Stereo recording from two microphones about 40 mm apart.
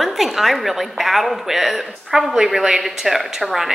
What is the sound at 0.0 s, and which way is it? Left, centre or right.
A woman's voice, centre.